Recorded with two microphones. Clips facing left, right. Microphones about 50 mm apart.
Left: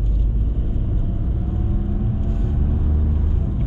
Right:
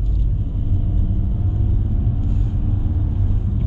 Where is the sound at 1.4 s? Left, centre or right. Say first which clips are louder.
Even; centre.